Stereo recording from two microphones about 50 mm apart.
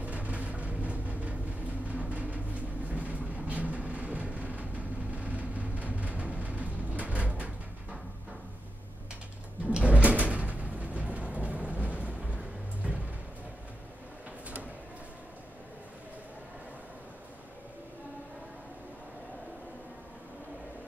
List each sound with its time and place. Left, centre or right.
0.0 s vehicle: right
1.9 s a sound: right
2.9 s vehicle: right
9.7 s sliding door: right
12.8 s music: right